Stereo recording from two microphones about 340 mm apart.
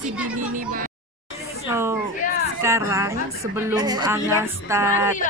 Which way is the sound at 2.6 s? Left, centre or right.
Centre.